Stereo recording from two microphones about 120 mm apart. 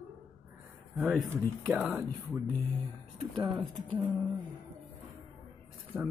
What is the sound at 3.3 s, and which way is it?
Speech, 40° right (ahead or behind).